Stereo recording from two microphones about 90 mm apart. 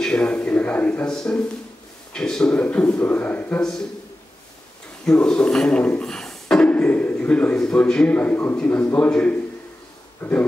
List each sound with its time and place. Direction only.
0.0 s a man's voice: 10° left (ahead or behind)
5.0 s a man's voice: 10° left (ahead or behind)